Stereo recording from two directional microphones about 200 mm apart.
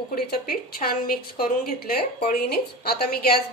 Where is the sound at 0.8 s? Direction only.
45° left (ahead or behind).